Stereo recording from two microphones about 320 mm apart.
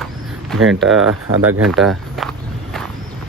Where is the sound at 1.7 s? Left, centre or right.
Centre.